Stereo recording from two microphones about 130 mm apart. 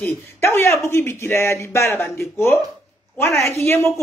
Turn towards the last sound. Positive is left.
turn(degrees=20)  # may be behind; listen again after turning